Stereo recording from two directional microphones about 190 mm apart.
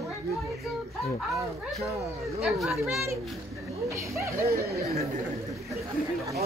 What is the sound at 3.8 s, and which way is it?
Speech, 15° right (ahead or behind).